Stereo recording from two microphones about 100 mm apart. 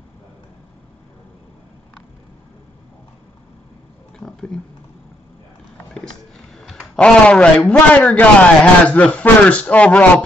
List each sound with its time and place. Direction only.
4.2 s wild animals: 5° left (ahead or behind)
5.9 s speech: 5° left (ahead or behind)